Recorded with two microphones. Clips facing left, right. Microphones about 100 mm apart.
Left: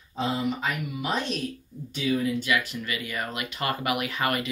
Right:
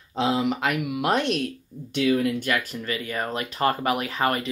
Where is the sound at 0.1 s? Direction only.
90° right; by 2.3 s 70° right (ahead or behind).